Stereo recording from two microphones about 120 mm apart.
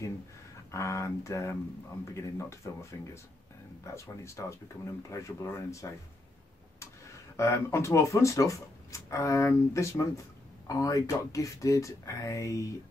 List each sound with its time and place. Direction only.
0.7 s speech: 25° left (ahead or behind)
7.3 s speech: 25° left (ahead or behind)